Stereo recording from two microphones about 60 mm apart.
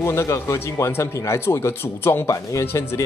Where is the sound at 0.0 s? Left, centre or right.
Left.